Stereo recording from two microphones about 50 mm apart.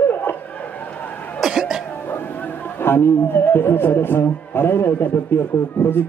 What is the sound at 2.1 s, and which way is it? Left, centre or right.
A man's voice, left.